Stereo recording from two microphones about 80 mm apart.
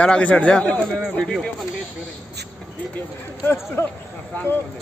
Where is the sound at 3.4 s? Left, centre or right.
Left.